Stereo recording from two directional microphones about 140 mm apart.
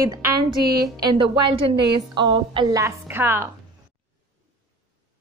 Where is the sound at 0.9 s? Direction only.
30° right (ahead or behind).